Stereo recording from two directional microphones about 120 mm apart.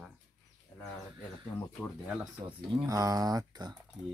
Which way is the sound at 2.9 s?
30° right (ahead or behind).